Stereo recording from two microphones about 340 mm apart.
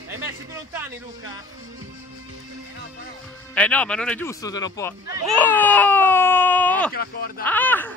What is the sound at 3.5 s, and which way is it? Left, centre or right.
Speech, centre.